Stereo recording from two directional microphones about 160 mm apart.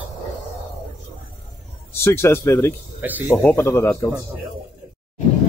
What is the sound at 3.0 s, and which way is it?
Speech, 10° right (ahead or behind).